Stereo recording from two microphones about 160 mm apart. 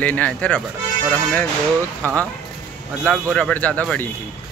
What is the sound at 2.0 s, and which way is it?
Speech, 20° right (ahead or behind).